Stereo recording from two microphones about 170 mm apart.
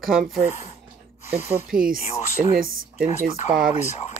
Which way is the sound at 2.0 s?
40° left (ahead or behind).